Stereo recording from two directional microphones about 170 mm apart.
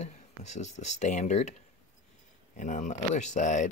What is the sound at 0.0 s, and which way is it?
Speech, 40° left (ahead or behind).